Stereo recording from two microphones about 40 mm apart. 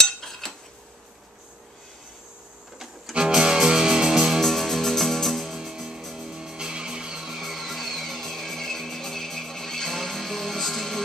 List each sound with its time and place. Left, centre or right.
0.0 s cutlery: centre
2.8 s music: centre
4.4 s music: centre
5.6 s music: centre
7.2 s music: centre